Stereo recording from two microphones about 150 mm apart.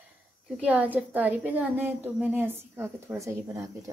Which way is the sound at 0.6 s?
10° right (ahead or behind).